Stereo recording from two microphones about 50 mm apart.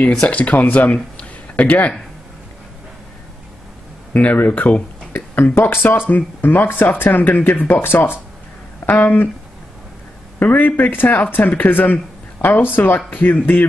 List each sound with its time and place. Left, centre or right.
0.3 s speech: left
4.1 s speech: left
5.3 s speech: left
10.4 s speech: left